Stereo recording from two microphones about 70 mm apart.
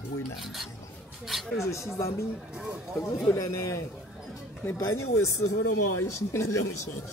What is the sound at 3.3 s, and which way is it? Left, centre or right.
Speech, left.